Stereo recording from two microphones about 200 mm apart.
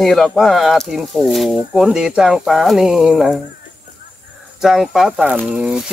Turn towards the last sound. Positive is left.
turn(degrees=-5)  # may be behind; listen again after turning